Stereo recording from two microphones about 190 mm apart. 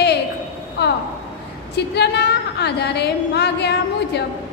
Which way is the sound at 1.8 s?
60° left (ahead or behind).